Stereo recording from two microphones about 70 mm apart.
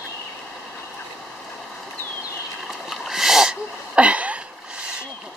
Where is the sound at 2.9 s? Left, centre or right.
Centre.